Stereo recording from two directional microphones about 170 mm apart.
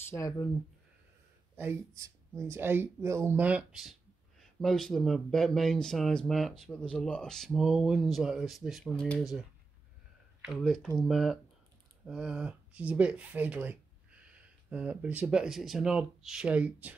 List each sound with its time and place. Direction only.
0.1 s speech: 15° left (ahead or behind)
1.6 s speech: 15° right (ahead or behind); by 9.4 s centre (ahead or behind)
10.4 s speech: centre (ahead or behind)